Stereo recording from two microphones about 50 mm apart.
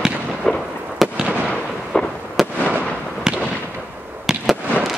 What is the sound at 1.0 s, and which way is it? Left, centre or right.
Fireworks, centre.